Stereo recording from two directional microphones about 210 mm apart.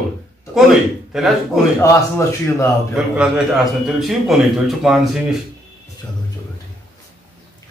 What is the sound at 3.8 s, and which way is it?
Speech, centre (ahead or behind).